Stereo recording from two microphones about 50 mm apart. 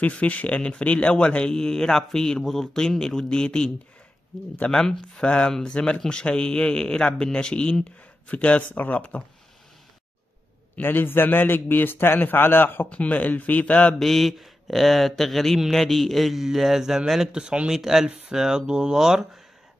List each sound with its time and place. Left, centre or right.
0.0 s a man's voice: left
4.7 s a man's voice: centre; by 9.2 s left
10.8 s a man's voice: left
12.9 s speech: left
13.9 s speech: centre